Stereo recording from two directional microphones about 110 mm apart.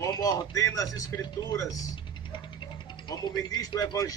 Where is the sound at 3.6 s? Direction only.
35° left (ahead or behind).